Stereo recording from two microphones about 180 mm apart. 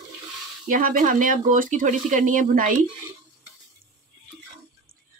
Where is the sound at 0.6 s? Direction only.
50° right (ahead or behind).